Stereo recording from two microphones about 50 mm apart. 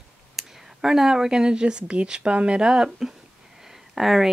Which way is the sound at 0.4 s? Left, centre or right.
Centre.